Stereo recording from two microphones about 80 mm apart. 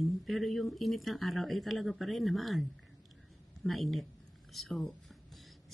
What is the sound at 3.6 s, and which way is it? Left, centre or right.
Speech, centre.